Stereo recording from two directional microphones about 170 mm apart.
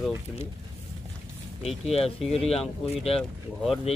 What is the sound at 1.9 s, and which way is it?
Speech, 35° left (ahead or behind).